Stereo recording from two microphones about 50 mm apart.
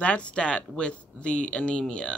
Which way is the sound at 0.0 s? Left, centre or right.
Left.